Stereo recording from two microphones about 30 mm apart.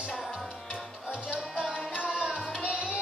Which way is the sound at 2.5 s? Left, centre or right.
Right.